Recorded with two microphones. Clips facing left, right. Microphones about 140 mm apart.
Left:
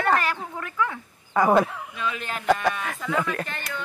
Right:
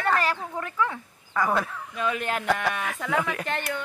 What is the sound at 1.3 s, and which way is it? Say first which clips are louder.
Speech: left 6 dB; 30° left (ahead or behind).